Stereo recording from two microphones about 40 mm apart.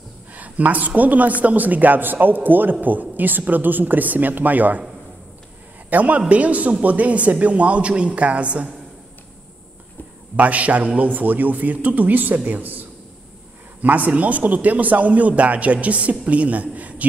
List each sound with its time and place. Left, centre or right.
0.3 s a man's voice: right
5.9 s a man's voice: right
10.3 s a man's voice: right
13.8 s a man's voice: right